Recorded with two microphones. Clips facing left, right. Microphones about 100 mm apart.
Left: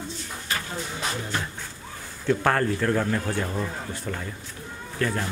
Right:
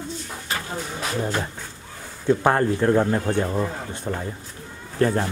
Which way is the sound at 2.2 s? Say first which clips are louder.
Right 3 dB; 20° right (ahead or behind).